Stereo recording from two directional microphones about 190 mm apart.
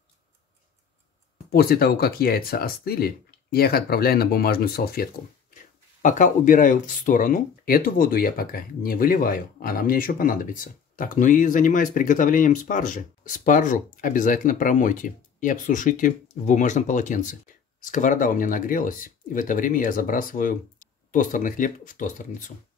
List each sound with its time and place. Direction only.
1.5 s speech: 55° left (ahead or behind)
6.0 s speech: 40° left (ahead or behind)